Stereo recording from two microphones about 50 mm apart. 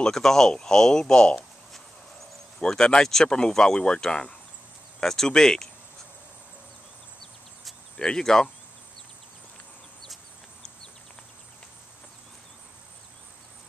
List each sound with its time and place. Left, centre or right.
0.0 s speech: centre
2.6 s speech: centre
5.0 s speech: centre
8.0 s speech: centre